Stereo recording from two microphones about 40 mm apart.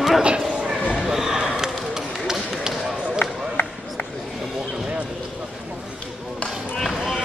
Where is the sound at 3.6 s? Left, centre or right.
Left.